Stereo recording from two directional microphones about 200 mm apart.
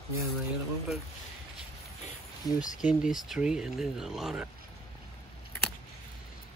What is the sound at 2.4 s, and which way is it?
Speech, 15° left (ahead or behind).